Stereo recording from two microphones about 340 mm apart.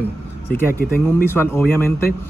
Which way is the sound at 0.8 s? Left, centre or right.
Left.